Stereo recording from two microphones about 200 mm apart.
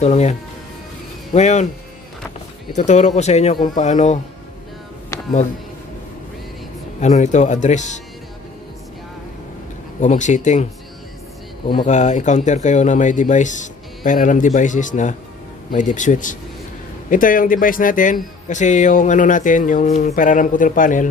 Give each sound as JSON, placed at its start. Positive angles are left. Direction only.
{"t": 0.0, "sound": "speech", "side_deg": 35}
{"t": 2.7, "sound": "speech", "side_deg": 35}
{"t": 5.1, "sound": "a sound", "side_deg": 15}
{"t": 7.0, "sound": "speech", "side_deg": 35}
{"t": 9.9, "sound": "speech", "side_deg": 35}
{"t": 11.8, "sound": "speech", "side_deg": 35}